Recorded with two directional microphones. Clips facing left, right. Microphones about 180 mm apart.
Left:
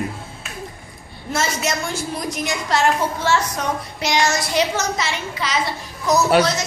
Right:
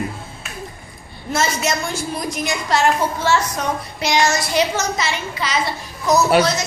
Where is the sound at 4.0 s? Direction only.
5° right (ahead or behind).